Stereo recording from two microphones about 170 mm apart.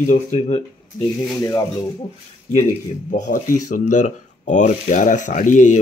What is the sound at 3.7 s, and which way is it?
Speech, 45° left (ahead or behind).